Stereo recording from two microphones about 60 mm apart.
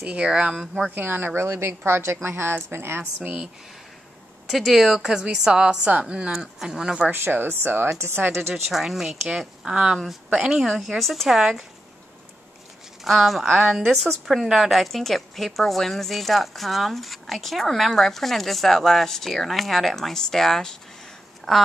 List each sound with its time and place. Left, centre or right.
0.0 s a woman's voice: centre
0.9 s a woman's voice: right
4.5 s a woman's voice: centre
7.1 s speech: right
7.9 s a woman's voice: right
8.2 s speech: right
8.6 s a woman's voice: centre
9.7 s a woman's voice: centre
13.0 s a woman's voice: centre